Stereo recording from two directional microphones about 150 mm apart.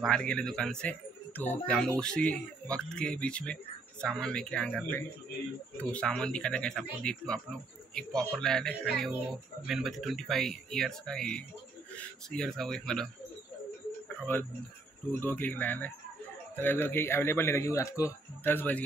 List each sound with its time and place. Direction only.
0.0 s speech: 5° left (ahead or behind)
14.3 s speech: 10° left (ahead or behind)